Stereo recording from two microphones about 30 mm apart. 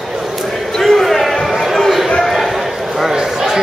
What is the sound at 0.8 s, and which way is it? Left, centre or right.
Basketball bounce, centre.